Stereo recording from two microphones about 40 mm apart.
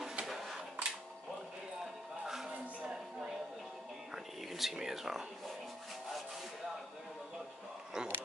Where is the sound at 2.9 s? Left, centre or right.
Centre.